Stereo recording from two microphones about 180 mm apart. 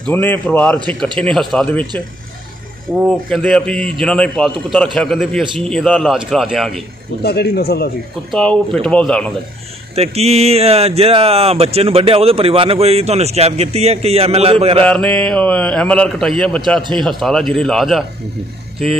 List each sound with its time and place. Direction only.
0.0 s a man's voice: 10° left (ahead or behind)
2.9 s a man's voice: centre (ahead or behind)
7.2 s a man's voice: 60° left (ahead or behind)
8.3 s a man's voice: 5° left (ahead or behind)
9.9 s speech: 35° right (ahead or behind)
14.8 s a man's voice: 5° left (ahead or behind)